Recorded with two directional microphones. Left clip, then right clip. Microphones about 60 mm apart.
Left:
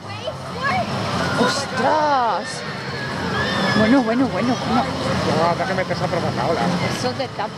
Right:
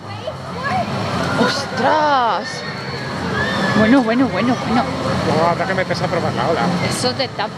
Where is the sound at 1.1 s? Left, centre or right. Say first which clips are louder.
Right 2 dB; centre.